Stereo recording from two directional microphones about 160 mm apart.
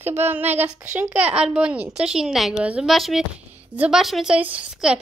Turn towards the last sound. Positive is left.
turn(degrees=-5)  # may be behind; listen again after turning